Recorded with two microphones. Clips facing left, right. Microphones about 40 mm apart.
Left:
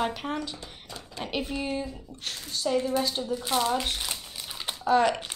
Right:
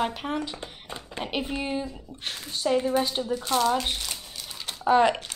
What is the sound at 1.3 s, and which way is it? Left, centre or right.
Speech, centre.